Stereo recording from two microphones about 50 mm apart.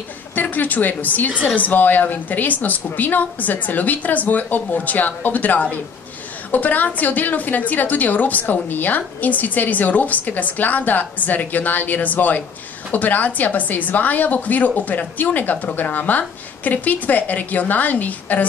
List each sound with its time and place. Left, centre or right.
0.3 s a woman's voice: left